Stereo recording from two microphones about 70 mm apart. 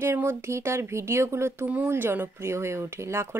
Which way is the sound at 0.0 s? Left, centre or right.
Right.